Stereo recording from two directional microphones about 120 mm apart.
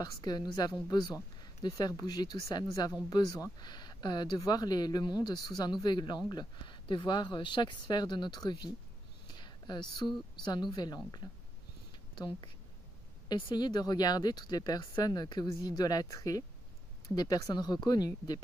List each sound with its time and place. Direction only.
0.0 s speech: 35° left (ahead or behind)
9.3 s a sound: 40° left (ahead or behind)
10.4 s speech: 40° left (ahead or behind)
12.2 s speech: 40° left (ahead or behind)